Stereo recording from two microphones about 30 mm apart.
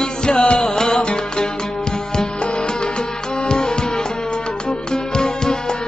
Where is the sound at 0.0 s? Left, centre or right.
Left.